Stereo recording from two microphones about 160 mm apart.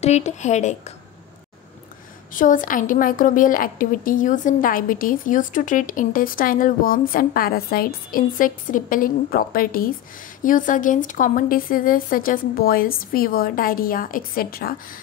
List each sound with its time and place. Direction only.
0.0 s speech: 45° left (ahead or behind)
2.3 s a woman's voice: 55° left (ahead or behind)